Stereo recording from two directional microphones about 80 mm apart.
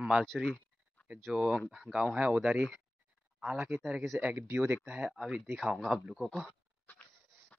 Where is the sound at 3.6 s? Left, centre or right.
Centre.